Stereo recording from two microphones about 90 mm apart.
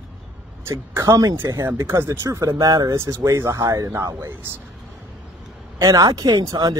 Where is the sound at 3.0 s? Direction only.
30° right (ahead or behind).